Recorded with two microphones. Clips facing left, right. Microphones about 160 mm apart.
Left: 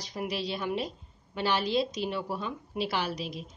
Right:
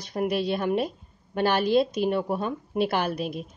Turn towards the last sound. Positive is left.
turn(degrees=-55)  # may be behind; listen again after turning